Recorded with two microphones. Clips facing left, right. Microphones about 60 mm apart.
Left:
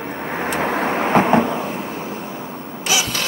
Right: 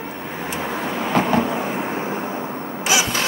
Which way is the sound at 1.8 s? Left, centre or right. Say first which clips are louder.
Right 3 dB; right.